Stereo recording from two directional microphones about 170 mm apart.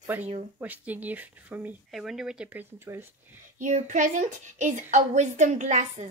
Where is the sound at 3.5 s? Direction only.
45° right (ahead or behind).